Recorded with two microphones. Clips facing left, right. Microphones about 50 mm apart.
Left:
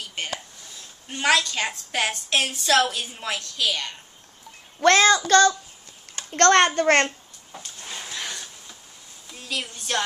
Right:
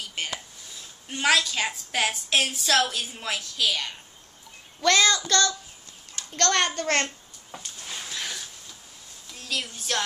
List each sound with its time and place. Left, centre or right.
0.0 s a sound: centre
1.2 s a woman's voice: centre
4.9 s child singing: left
6.3 s a child's voice: left
7.8 s a sound: centre
9.3 s a woman's voice: centre